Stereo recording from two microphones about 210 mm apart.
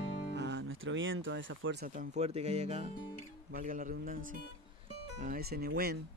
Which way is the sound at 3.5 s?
40° right (ahead or behind).